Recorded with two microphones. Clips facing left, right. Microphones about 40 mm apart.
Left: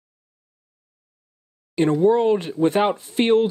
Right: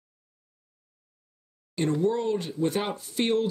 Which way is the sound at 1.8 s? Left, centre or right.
Left.